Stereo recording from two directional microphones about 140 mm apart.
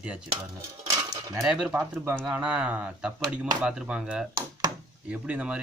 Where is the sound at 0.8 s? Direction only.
20° right (ahead or behind).